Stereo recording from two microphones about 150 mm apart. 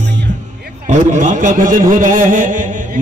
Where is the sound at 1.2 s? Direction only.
60° right (ahead or behind).